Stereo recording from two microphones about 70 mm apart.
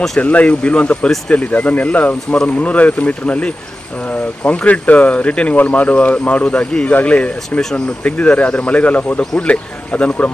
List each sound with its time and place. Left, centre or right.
0.2 s speech: left